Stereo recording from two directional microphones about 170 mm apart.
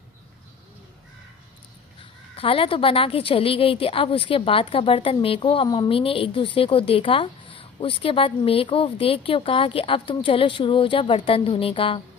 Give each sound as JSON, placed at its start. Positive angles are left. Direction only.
{"t": 2.3, "sound": "a woman's voice", "side_deg": 35}